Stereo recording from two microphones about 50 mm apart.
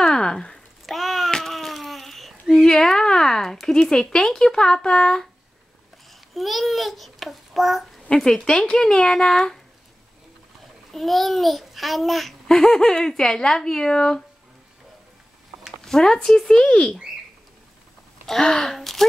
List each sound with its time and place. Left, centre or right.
0.0 s a sound: centre
0.8 s a sound: centre
2.5 s a sound: centre
3.5 s speech: centre
6.3 s a child's voice: centre
8.1 s speech: centre
10.9 s a child's voice: centre
12.4 s speech: centre
15.8 s speech: centre
18.2 s speech: centre